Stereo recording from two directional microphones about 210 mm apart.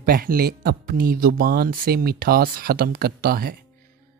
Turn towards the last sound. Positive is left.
turn(degrees=-45)  # may be behind; listen again after turning